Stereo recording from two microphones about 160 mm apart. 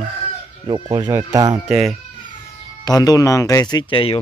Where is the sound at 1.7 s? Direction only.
5° right (ahead or behind).